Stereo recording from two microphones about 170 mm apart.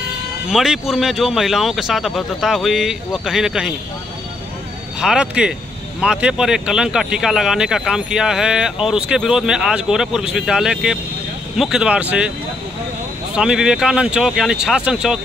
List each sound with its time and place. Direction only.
0.5 s speech: centre (ahead or behind)
5.0 s speech: 5° right (ahead or behind)
13.3 s speech: 5° right (ahead or behind)